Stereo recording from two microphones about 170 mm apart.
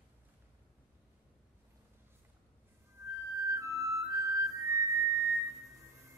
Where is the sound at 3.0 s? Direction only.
15° right (ahead or behind).